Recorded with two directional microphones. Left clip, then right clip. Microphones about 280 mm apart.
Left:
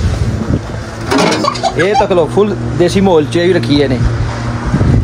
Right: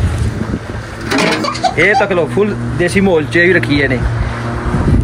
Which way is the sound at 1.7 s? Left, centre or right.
Centre.